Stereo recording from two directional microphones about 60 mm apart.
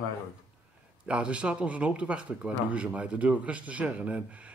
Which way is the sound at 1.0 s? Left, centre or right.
Centre.